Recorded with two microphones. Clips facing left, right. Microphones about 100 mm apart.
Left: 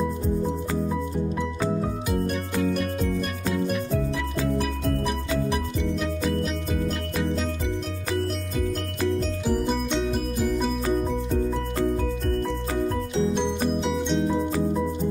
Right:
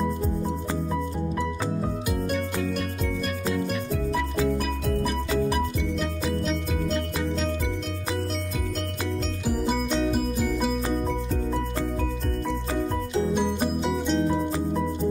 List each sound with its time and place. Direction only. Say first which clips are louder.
3.4 s music: left 2 dB; centre (ahead or behind)
9.5 s music: even; 5° right (ahead or behind)
13.9 s music: even; centre (ahead or behind)